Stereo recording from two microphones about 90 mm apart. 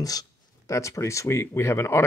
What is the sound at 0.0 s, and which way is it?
Speech, 40° left (ahead or behind).